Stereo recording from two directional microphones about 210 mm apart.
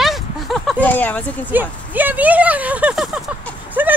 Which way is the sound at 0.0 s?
Centre (ahead or behind).